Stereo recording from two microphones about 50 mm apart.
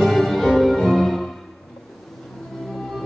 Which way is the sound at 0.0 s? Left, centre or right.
Centre.